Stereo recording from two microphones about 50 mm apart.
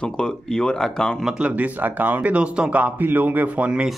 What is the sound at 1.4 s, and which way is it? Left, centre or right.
Speech, right.